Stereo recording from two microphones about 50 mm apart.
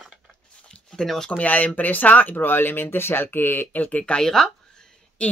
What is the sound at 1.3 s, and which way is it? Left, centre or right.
Speech, left.